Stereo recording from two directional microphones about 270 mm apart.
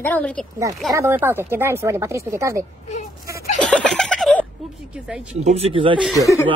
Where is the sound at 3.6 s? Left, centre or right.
Centre.